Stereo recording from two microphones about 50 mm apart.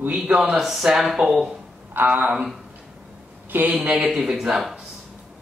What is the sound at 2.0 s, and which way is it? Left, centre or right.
Speech, right.